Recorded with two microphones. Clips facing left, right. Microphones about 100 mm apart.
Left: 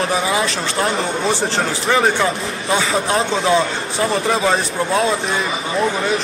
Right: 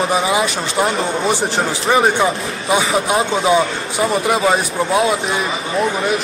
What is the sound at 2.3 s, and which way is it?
Speech, centre (ahead or behind).